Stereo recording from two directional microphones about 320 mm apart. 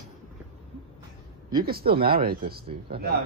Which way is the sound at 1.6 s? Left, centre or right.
Right.